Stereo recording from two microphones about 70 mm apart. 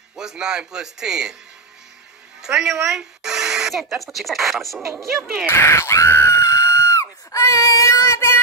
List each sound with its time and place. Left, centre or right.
0.1 s a man's voice: centre
2.4 s speech: centre
5.5 s screaming: left